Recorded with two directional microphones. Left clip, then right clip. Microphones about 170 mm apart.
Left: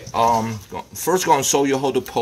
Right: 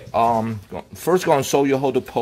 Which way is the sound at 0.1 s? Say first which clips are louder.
Left 1 dB; 35° right (ahead or behind).